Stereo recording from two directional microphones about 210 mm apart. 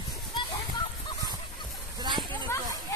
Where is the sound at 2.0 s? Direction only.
20° right (ahead or behind).